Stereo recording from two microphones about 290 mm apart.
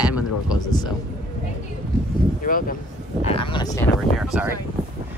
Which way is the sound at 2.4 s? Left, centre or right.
Left.